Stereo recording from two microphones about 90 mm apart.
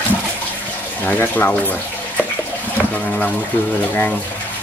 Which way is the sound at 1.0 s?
20° left (ahead or behind).